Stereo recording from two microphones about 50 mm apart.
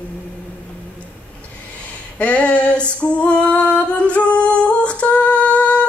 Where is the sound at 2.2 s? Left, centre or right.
Left.